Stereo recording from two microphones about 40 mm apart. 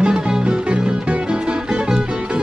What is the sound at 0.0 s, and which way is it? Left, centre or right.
Music, right.